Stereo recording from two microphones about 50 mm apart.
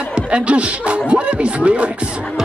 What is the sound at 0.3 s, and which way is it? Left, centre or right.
Speech, right.